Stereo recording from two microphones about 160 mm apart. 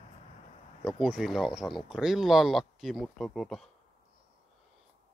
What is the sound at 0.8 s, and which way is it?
Speech, 5° right (ahead or behind).